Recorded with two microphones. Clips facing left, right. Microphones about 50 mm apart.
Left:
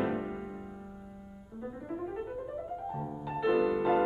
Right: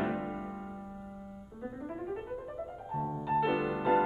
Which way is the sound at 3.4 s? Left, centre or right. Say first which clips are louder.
Left 3 dB; centre.